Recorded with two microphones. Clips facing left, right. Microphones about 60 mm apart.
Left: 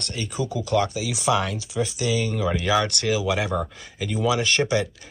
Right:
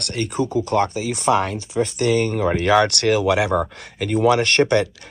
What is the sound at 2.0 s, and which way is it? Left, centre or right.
Speech, right.